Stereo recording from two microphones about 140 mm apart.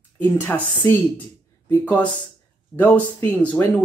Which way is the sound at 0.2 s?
15° left (ahead or behind).